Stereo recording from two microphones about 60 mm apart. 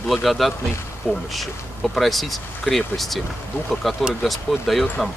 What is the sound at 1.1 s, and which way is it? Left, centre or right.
Speech, centre.